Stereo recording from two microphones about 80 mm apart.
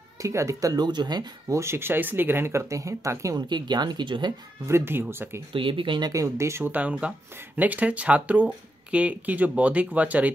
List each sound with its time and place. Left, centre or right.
0.2 s speech: right
0.8 s speech: right
1.5 s speech: right
3.3 s speech: right
4.6 s speech: right
5.5 s speech: right
6.1 s speech: right
6.6 s speech: centre